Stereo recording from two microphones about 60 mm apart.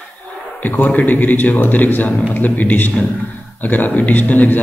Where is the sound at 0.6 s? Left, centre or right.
Left.